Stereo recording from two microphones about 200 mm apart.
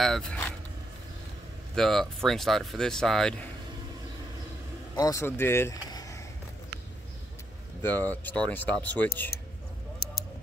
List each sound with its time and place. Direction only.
0.0 s speech: 5° left (ahead or behind)
1.8 s speech: centre (ahead or behind)
4.9 s speech: 15° left (ahead or behind)
7.8 s speech: 10° left (ahead or behind)